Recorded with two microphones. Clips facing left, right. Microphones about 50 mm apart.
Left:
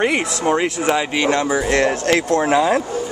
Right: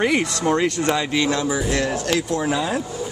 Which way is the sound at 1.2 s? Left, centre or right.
Left.